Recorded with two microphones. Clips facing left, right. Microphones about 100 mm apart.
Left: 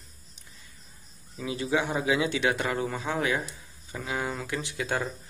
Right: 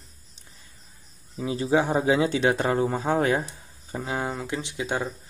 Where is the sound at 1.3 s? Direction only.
30° right (ahead or behind).